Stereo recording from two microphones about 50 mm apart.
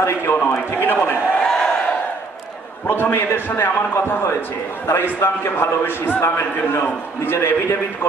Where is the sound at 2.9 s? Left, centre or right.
Left.